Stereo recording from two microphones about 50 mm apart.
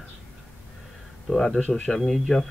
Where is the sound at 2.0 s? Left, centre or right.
Centre.